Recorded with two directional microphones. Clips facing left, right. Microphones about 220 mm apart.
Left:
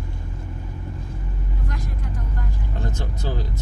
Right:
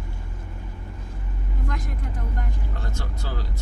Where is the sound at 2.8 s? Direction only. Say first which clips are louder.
Left 4 dB; 20° left (ahead or behind).